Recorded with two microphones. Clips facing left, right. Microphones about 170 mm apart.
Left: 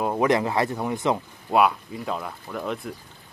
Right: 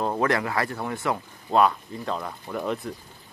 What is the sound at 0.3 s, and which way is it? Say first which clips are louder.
Speech: left 4 dB; 25° left (ahead or behind).